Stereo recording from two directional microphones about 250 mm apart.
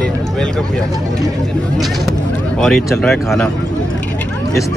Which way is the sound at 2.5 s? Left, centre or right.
Centre.